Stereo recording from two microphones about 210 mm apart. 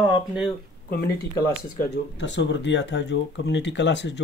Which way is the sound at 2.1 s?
60° left (ahead or behind).